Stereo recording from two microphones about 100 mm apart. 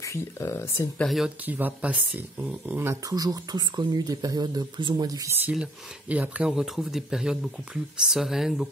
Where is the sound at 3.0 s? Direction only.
40° right (ahead or behind).